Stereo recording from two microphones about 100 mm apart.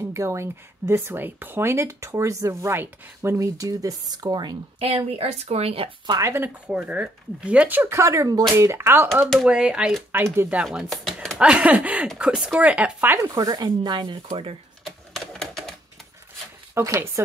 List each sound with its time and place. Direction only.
0.1 s speech: 30° right (ahead or behind); by 4.6 s 45° right (ahead or behind)
4.7 s speech: 90° right
6.2 s speech: 25° right (ahead or behind)
9.1 s speech: centre (ahead or behind)
9.5 s speech: 10° right (ahead or behind)
10.1 s speech: 25° right (ahead or behind)
10.6 s speech: 10° right (ahead or behind)
13.3 s speech: 40° right (ahead or behind)
14.3 s speech: 75° right (ahead or behind)
14.9 s typewriter: 5° left (ahead or behind)
16.7 s speech: 30° right (ahead or behind)